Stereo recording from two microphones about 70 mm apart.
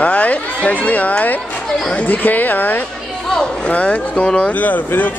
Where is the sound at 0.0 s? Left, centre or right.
Centre.